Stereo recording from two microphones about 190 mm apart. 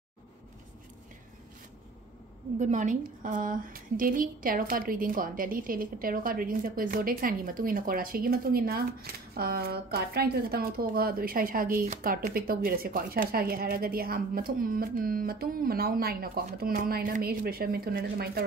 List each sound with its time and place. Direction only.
2.6 s a woman's voice: 40° right (ahead or behind)